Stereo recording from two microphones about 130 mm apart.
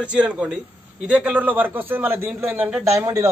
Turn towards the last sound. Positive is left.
turn(degrees=-20)  # may be behind; listen again after turning